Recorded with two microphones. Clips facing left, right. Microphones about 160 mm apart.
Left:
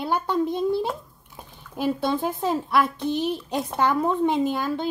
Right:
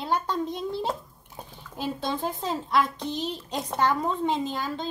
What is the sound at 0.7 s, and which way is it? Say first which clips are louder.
Speech: left 5 dB; 20° right (ahead or behind).